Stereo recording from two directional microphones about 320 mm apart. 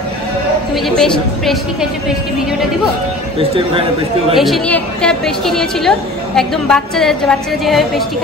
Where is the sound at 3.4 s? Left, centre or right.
Centre.